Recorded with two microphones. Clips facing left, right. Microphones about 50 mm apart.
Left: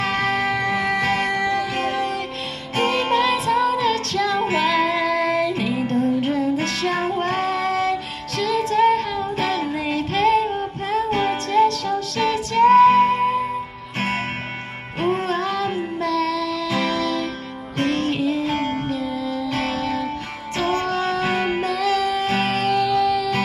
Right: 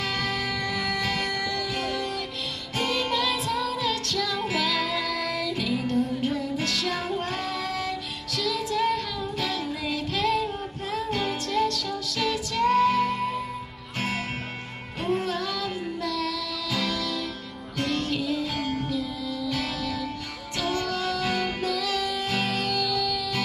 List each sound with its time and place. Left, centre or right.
0.0 s music: left
5.9 s music: left